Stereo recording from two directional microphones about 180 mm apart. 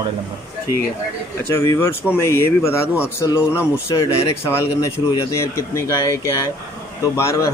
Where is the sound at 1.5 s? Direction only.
15° left (ahead or behind).